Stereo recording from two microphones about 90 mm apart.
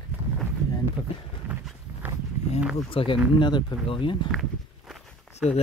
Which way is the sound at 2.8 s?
90° left.